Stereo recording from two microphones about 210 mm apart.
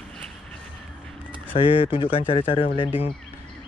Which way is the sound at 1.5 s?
25° left (ahead or behind).